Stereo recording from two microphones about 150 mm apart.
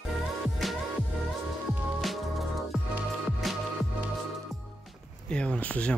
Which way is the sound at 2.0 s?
Centre (ahead or behind).